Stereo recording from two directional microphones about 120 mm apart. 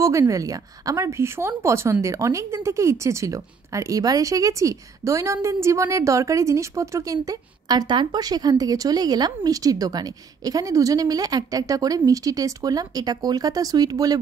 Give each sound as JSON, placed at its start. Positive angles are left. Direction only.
{"t": 0.0, "sound": "speech", "side_deg": -25}